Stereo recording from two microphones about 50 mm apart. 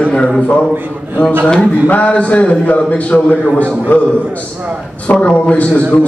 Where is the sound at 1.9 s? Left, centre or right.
Left.